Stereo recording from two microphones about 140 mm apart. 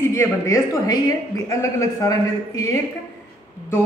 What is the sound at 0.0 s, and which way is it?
A woman's voice, 20° left (ahead or behind).